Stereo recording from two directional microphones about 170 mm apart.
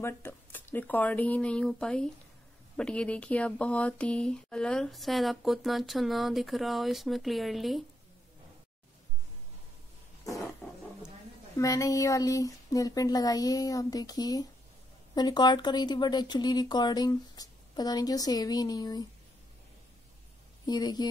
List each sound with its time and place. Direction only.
0.0 s speech: 15° left (ahead or behind)
10.6 s roaring cats: centre (ahead or behind)
11.5 s speech: 20° left (ahead or behind)
20.6 s speech: 25° left (ahead or behind)